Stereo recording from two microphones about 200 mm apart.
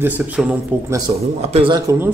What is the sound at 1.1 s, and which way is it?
Speech, 30° right (ahead or behind).